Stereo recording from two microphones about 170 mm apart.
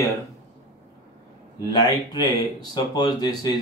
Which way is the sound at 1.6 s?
25° left (ahead or behind).